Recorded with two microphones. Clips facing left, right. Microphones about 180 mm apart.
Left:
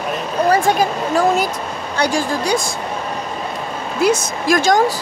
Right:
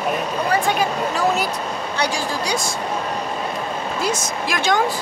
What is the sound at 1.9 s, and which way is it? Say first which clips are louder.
Speech: left 6 dB; 50° left (ahead or behind).